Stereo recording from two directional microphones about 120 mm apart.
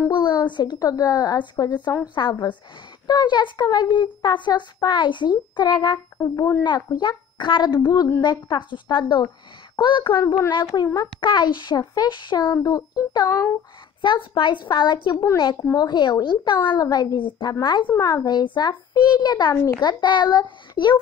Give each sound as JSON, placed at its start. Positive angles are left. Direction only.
{"t": 0.1, "sound": "a sound", "side_deg": 40}
{"t": 0.5, "sound": "speech", "side_deg": 35}
{"t": 6.2, "sound": "a child's voice", "side_deg": 20}
{"t": 6.6, "sound": "speech", "side_deg": 40}
{"t": 17.8, "sound": "speech", "side_deg": 25}
{"t": 19.5, "sound": "a child's voice", "side_deg": 25}
{"t": 19.8, "sound": "speech", "side_deg": 40}